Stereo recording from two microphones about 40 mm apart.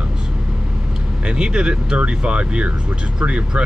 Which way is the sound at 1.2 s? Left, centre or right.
Right.